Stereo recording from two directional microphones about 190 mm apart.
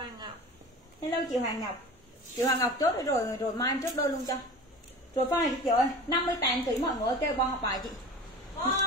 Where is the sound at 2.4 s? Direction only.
20° left (ahead or behind).